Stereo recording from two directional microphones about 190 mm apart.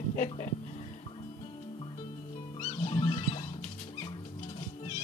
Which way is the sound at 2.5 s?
30° left (ahead or behind).